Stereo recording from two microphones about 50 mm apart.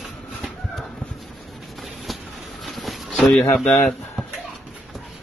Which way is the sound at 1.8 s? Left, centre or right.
Centre.